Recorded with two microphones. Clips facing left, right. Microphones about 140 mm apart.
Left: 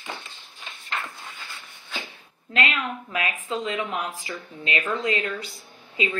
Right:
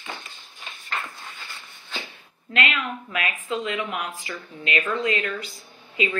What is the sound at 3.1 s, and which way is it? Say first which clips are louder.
Speech: right 1 dB; 25° left (ahead or behind).